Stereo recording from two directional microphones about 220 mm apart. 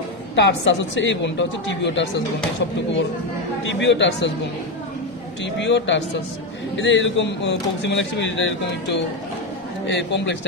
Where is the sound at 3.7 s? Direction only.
55° left (ahead or behind).